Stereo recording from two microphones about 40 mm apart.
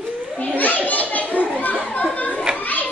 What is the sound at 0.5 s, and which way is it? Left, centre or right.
Children playing, left.